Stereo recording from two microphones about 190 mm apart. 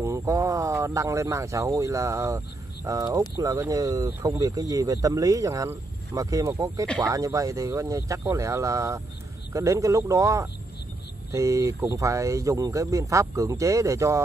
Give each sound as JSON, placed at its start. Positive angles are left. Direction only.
{"t": 0.0, "sound": "speech", "side_deg": -15}